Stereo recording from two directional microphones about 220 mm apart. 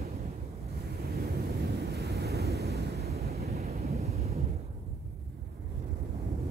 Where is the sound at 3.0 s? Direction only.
30° right (ahead or behind).